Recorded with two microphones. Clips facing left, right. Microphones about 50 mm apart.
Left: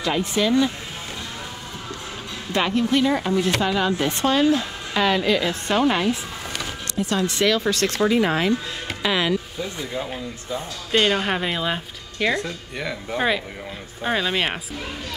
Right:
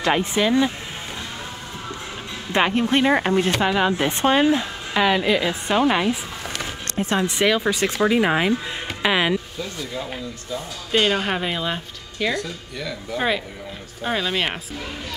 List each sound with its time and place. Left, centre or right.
0.0 s speech: right
2.5 s speech: right
3.6 s speech: right
6.6 s speech: right
9.0 s music: right
9.6 s speech: centre
10.9 s speech: centre
12.4 s speech: left
14.0 s speech: centre